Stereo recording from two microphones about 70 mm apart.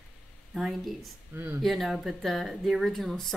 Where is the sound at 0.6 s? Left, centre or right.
Centre.